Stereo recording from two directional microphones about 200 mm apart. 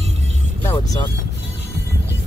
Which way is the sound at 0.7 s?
20° left (ahead or behind).